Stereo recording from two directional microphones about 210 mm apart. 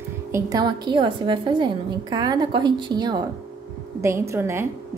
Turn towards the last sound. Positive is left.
turn(degrees=-10)  # may be behind; listen again after turning